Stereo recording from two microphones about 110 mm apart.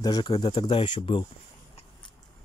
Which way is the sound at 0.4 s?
50° left (ahead or behind).